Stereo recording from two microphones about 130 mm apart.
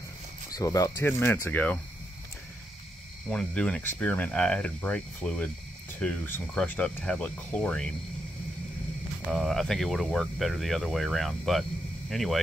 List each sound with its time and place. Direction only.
0.5 s speech: 25° left (ahead or behind); by 1.8 s 10° left (ahead or behind)
3.3 s speech: 5° left (ahead or behind)
9.3 s speech: 5° left (ahead or behind)